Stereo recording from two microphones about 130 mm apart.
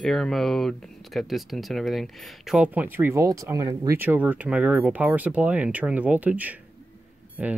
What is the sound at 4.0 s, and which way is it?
Speech, 15° right (ahead or behind).